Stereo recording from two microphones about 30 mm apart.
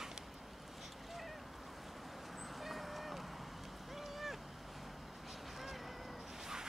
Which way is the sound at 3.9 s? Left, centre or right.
Centre.